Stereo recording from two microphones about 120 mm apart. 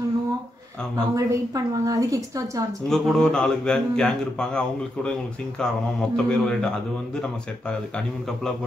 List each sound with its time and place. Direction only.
1.1 s a woman's voice: 30° right (ahead or behind)
2.9 s a man's voice: 5° left (ahead or behind)